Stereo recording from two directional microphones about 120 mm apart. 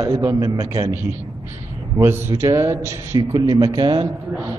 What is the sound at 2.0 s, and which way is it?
A man's voice, 20° right (ahead or behind).